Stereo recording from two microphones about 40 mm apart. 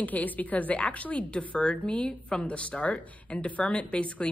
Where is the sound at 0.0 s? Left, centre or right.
Left.